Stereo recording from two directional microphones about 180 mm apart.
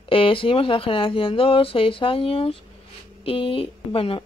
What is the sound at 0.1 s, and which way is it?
Speech, 30° left (ahead or behind).